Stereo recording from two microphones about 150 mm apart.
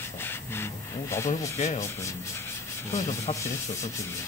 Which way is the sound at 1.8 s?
20° left (ahead or behind).